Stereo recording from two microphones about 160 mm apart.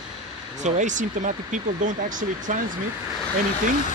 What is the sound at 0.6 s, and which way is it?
Speech, 50° right (ahead or behind).